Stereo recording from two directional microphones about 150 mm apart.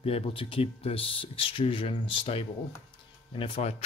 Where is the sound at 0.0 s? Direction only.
40° left (ahead or behind).